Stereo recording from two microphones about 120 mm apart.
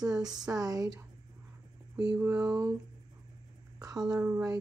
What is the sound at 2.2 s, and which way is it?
Speech, 25° right (ahead or behind).